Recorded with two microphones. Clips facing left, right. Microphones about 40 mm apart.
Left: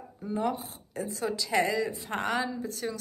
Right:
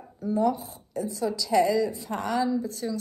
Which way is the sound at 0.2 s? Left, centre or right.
Left.